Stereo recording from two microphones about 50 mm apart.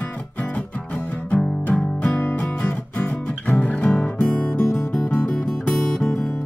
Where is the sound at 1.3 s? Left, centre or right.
Left.